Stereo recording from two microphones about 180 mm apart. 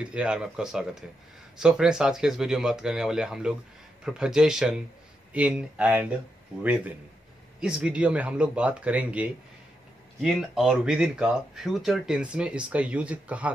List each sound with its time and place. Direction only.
0.0 s speech: 5° right (ahead or behind)